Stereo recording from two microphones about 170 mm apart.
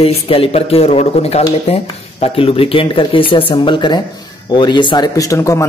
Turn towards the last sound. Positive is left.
turn(degrees=20)  # may be behind; listen again after turning